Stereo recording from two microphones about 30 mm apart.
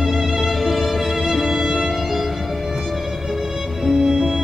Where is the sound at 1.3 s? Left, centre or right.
Centre.